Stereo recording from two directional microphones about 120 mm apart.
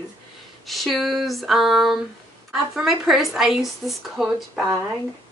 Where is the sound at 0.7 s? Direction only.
Centre (ahead or behind).